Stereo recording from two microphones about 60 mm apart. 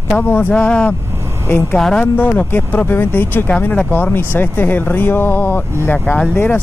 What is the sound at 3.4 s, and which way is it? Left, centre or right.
Speech, left.